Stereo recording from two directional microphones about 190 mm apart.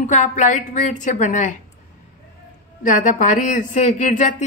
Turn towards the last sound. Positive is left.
turn(degrees=40)  # may be behind; listen again after turning